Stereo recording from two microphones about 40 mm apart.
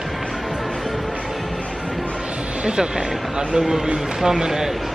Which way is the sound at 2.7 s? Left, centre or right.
Centre.